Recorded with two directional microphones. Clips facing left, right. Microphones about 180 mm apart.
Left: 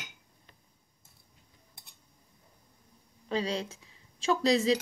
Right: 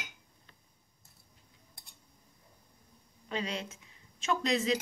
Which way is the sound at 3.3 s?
35° left (ahead or behind).